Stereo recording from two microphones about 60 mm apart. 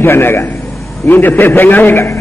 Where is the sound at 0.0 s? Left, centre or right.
Left.